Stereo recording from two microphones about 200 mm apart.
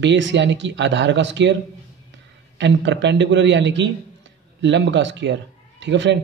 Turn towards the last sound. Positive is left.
turn(degrees=-65)  # may be behind; listen again after turning